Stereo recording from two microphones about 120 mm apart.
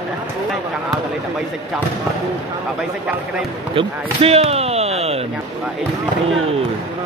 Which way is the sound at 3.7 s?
50° right (ahead or behind).